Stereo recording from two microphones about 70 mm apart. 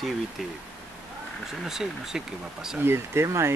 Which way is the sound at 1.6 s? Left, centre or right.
Centre.